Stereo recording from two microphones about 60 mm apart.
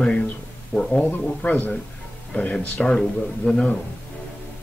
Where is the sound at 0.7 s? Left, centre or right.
Centre.